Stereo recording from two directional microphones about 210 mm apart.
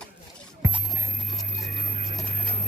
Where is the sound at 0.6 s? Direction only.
15° right (ahead or behind).